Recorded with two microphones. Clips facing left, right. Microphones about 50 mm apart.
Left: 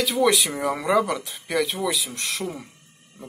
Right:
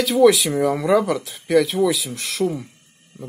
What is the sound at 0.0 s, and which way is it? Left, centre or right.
Speech, centre.